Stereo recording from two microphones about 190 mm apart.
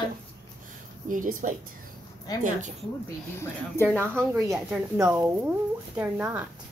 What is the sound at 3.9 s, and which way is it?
Speech, 15° right (ahead or behind).